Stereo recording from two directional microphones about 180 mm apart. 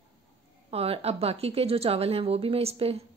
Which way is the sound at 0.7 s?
35° right (ahead or behind).